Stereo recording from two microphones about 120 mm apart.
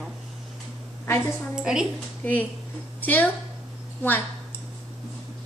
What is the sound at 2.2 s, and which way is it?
A woman's voice, 15° left (ahead or behind).